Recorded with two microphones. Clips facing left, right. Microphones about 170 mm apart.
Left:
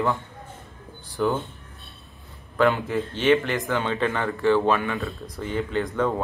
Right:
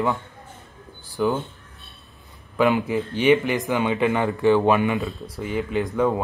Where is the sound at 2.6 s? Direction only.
15° right (ahead or behind).